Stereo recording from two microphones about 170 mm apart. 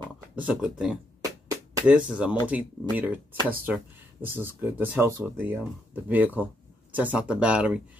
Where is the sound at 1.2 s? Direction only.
20° right (ahead or behind).